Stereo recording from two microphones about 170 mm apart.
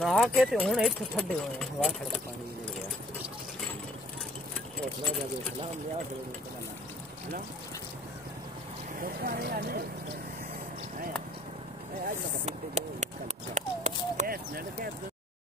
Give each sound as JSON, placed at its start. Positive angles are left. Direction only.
{"t": 0.0, "sound": "speech", "side_deg": 0}
{"t": 9.0, "sound": "speech", "side_deg": -60}
{"t": 12.4, "sound": "speech", "side_deg": -40}
{"t": 13.6, "sound": "a sound", "side_deg": -45}
{"t": 14.2, "sound": "speech", "side_deg": -60}